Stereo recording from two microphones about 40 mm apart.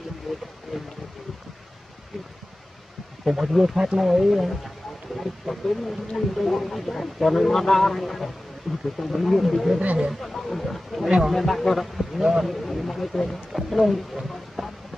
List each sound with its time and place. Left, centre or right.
0.3 s speech: centre
3.3 s speech: centre
4.0 s speech: centre